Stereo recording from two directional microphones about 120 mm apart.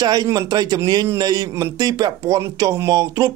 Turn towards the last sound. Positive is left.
turn(degrees=-25)  # may be behind; listen again after turning